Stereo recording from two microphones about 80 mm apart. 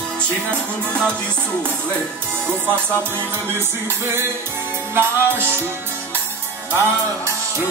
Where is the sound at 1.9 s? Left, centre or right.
Centre.